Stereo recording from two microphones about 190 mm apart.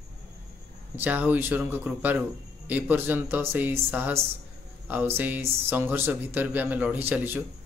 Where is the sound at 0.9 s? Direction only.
10° right (ahead or behind).